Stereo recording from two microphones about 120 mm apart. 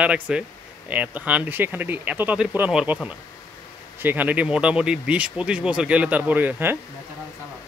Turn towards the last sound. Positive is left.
turn(degrees=-15)  # may be behind; listen again after turning